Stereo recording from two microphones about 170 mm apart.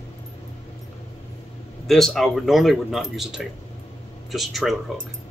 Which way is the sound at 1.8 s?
Centre (ahead or behind).